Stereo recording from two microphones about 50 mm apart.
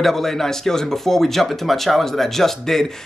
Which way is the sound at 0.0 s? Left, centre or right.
Centre.